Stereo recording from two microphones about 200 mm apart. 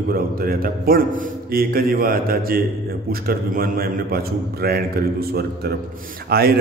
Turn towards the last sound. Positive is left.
turn(degrees=-50)  # may be behind; listen again after turning